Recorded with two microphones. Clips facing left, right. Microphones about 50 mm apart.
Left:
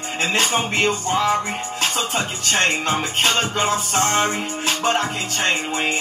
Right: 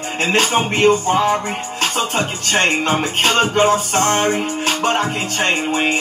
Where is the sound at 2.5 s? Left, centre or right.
Right.